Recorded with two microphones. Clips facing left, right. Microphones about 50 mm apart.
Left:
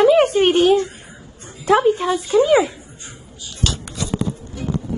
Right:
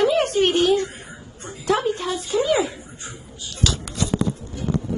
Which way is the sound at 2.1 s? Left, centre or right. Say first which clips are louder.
Left 7 dB; left.